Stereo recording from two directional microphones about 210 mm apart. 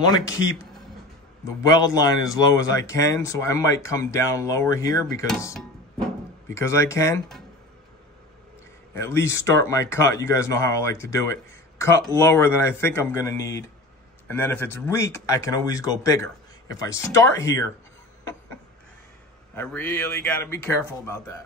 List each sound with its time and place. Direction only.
0.0 s speech: 20° left (ahead or behind)
1.7 s speech: 15° left (ahead or behind)
6.5 s speech: 15° left (ahead or behind)
8.9 s speech: 15° left (ahead or behind)
19.5 s speech: 10° left (ahead or behind)